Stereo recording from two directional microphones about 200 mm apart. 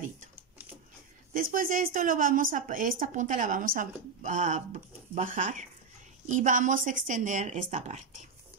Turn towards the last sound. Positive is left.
turn(degrees=-35)  # may be behind; listen again after turning